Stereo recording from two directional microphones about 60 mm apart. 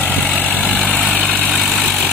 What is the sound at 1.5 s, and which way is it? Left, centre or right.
Vehicle, centre.